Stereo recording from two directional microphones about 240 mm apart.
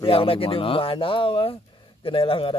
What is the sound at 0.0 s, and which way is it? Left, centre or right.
Speech, left.